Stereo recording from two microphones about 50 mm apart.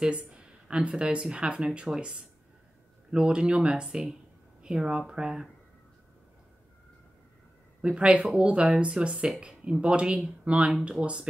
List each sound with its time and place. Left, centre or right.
0.0 s speech: right
7.8 s speech: right